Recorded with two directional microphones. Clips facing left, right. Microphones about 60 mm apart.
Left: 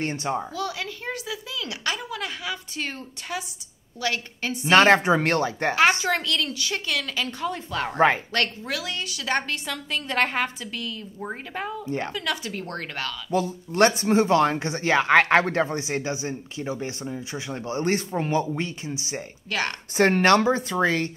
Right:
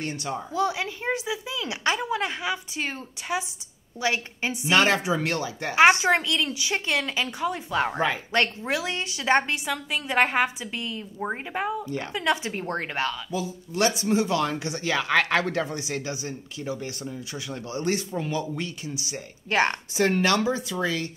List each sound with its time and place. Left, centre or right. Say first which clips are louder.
0.0 s speech: left 4 dB; left
0.5 s a woman's voice: right 4 dB; right
2.7 s a woman's voice: right 1 dB; centre
4.6 s speech: left 5 dB; left
5.8 s a woman's voice: right 4 dB; right
9.7 s a woman's voice: right 1 dB; centre
13.3 s speech: left 5 dB; left
19.5 s a woman's voice: right 5 dB; right
19.9 s speech: left 4 dB; left